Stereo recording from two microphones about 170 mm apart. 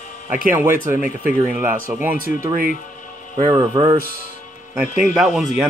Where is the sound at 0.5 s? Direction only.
15° right (ahead or behind).